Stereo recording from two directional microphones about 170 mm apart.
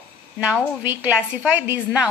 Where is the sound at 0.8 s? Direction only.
10° right (ahead or behind).